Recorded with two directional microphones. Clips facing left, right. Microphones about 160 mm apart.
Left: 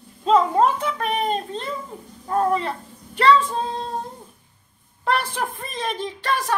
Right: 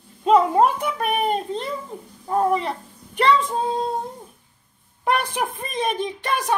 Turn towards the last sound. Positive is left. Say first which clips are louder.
# right 1 dB
turn(degrees=-15)  # may be behind; listen again after turning